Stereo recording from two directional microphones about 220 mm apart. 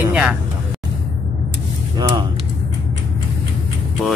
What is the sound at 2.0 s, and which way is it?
Speech, 20° right (ahead or behind).